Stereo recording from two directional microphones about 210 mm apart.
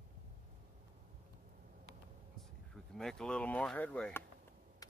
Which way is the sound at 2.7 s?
5° left (ahead or behind).